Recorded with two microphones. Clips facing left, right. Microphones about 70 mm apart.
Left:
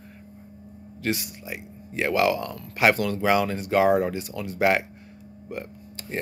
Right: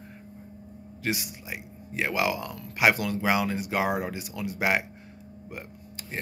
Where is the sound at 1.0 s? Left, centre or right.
Centre.